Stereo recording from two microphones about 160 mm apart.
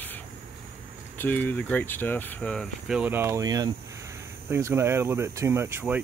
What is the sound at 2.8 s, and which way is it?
Speech, 5° right (ahead or behind).